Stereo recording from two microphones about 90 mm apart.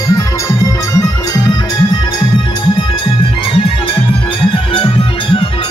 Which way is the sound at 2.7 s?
85° left.